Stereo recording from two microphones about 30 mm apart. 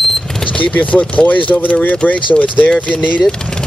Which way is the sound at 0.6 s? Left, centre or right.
Left.